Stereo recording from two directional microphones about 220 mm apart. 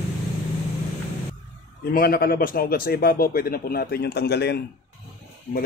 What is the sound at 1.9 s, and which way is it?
Speech, 40° left (ahead or behind).